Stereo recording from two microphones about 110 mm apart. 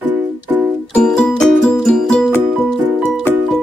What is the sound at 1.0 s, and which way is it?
Music, 5° left (ahead or behind).